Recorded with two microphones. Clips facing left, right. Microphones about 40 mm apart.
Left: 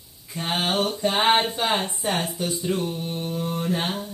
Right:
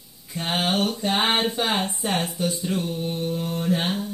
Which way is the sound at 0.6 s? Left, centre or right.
Left.